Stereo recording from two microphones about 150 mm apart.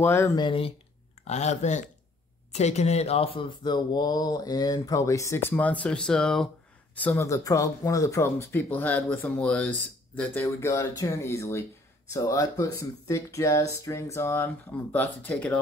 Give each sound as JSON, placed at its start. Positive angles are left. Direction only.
{"t": 0.0, "sound": "speech", "side_deg": 15}
{"t": 0.4, "sound": "speech", "side_deg": 35}
{"t": 1.2, "sound": "speech", "side_deg": 50}
{"t": 7.0, "sound": "speech", "side_deg": 15}